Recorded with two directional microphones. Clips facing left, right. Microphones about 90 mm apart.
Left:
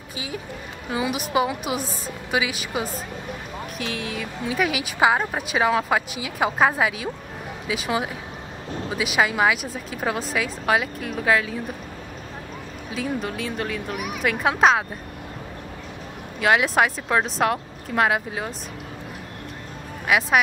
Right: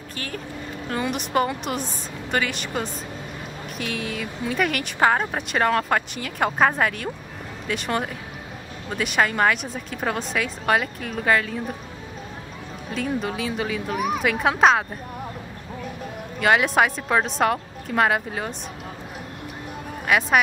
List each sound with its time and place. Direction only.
0.1 s speech: 10° left (ahead or behind)
12.9 s speech: centre (ahead or behind)
13.9 s speech: 35° right (ahead or behind)
14.2 s speech: centre (ahead or behind)
16.3 s speech: centre (ahead or behind)
20.1 s speech: centre (ahead or behind)